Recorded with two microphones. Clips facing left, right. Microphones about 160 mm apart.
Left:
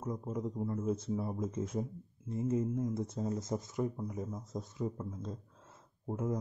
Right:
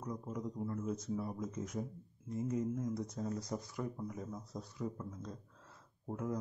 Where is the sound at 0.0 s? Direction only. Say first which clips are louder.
Left 4 dB; 25° left (ahead or behind).